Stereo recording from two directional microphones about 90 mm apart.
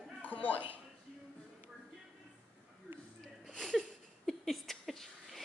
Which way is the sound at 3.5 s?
5° left (ahead or behind).